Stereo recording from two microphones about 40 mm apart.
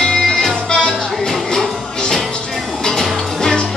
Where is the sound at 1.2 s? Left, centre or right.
Centre.